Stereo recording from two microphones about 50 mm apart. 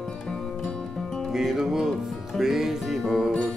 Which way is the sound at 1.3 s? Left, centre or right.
Centre.